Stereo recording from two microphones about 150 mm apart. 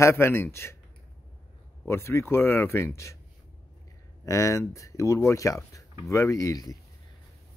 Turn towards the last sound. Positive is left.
turn(degrees=25)  # may be behind; listen again after turning